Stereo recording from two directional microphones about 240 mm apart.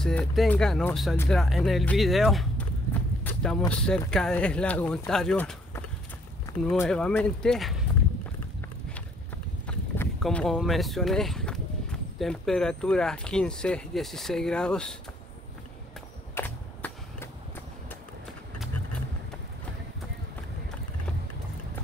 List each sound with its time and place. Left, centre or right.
0.0 s speech: centre
9.7 s speech: centre
16.3 s a sound: centre